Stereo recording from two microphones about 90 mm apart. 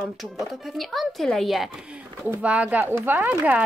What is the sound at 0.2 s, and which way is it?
Speech, centre (ahead or behind).